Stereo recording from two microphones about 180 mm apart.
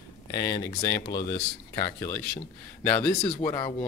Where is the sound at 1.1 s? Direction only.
60° left (ahead or behind).